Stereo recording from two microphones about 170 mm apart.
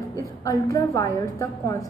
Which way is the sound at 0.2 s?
20° left (ahead or behind).